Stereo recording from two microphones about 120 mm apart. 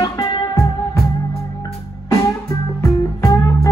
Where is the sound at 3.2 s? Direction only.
25° left (ahead or behind).